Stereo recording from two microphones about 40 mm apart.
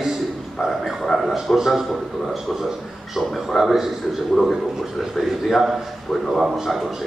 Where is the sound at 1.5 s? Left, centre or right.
Centre.